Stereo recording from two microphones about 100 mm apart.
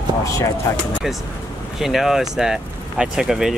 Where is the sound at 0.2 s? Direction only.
30° left (ahead or behind).